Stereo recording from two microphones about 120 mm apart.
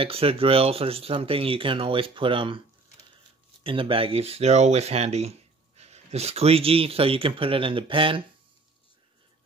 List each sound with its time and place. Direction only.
0.0 s speech: 50° right (ahead or behind)
3.6 s speech: 45° right (ahead or behind)